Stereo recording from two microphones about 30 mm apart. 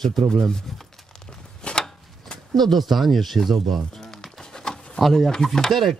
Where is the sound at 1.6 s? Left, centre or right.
Left.